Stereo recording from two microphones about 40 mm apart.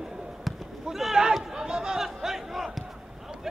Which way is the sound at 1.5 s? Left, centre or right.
Centre.